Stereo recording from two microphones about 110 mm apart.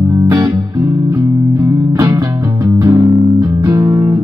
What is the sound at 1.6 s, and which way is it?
Music, 35° right (ahead or behind).